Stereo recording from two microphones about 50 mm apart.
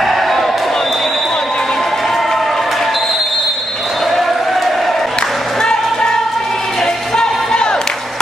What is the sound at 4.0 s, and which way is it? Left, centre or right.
Basketball bounce, centre.